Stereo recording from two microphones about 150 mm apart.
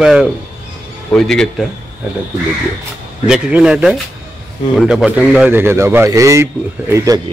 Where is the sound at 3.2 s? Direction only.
5° right (ahead or behind); by 7.2 s 25° right (ahead or behind).